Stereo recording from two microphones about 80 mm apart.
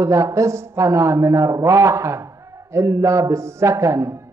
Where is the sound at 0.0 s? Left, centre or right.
Right.